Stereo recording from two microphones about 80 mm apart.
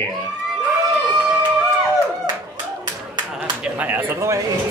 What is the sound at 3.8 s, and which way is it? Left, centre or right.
Speech, right.